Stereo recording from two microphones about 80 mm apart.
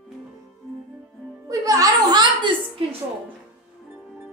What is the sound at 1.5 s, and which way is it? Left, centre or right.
Music, right.